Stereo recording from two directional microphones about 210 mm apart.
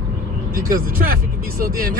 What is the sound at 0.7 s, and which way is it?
Speech, 40° right (ahead or behind).